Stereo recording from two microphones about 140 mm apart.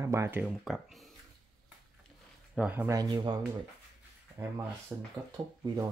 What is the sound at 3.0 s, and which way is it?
Speech, 30° right (ahead or behind).